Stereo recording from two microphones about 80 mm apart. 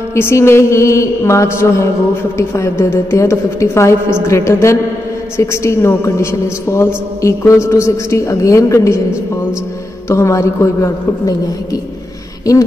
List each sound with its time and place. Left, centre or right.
0.1 s a woman's voice: left
10.0 s a woman's voice: left